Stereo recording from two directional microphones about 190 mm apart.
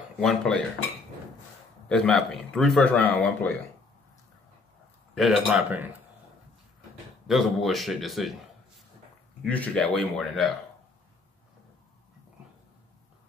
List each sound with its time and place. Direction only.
0.2 s speech: 5° left (ahead or behind)
1.9 s speech: 5° left (ahead or behind)
5.1 s speech: centre (ahead or behind)
7.2 s speech: centre (ahead or behind)
9.4 s speech: 5° left (ahead or behind)